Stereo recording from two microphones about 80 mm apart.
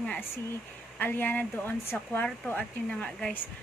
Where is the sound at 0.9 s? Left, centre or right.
Left.